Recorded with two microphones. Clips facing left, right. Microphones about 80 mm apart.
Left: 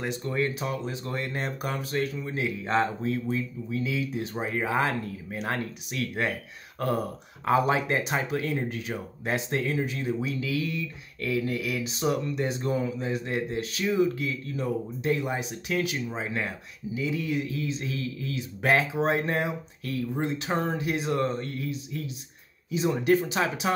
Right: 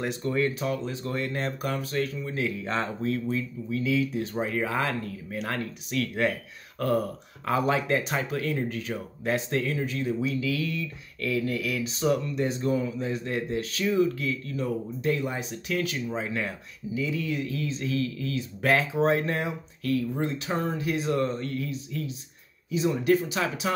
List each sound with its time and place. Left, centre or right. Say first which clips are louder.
0.2 s speech: right 3 dB; centre
20.4 s speech: left 1 dB; left